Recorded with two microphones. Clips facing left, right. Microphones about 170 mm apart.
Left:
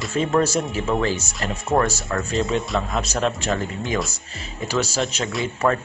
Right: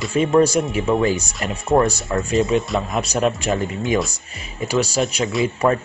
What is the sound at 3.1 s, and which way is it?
Speech, 15° right (ahead or behind).